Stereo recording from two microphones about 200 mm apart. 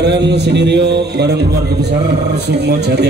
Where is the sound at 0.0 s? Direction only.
60° right (ahead or behind).